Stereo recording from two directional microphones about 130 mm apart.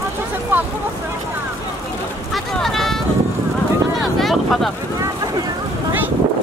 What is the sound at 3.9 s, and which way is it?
Vehicle, centre (ahead or behind).